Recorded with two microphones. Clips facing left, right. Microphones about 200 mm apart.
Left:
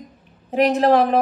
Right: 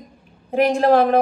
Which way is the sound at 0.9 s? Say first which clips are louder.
Right 1 dB; centre (ahead or behind).